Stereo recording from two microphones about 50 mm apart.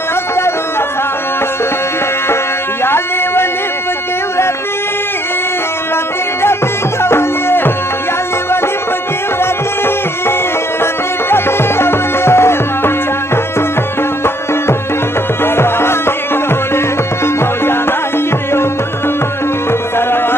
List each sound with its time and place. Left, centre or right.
2.8 s a sound: left
7.0 s music: left
9.4 s music: left
15.4 s music: left
20.1 s music: left